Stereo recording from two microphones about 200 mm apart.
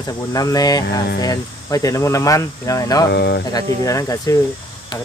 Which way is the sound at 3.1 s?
55° left (ahead or behind).